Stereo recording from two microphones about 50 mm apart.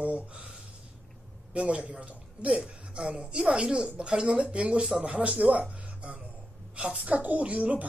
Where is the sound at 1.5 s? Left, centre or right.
Right.